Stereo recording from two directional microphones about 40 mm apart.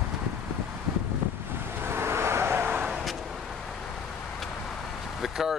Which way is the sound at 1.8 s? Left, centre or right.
Right.